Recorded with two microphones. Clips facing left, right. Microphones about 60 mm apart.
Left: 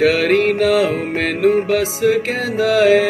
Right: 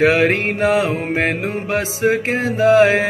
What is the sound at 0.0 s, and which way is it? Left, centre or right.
Music, right.